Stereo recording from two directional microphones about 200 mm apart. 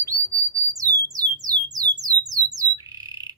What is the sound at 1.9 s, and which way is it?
Bird, 20° right (ahead or behind).